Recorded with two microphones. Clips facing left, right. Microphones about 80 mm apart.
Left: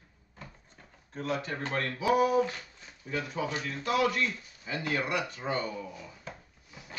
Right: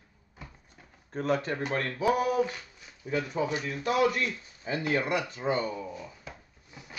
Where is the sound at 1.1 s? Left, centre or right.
Right.